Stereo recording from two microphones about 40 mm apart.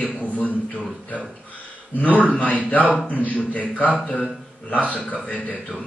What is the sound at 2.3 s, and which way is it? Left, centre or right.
A man's voice, left.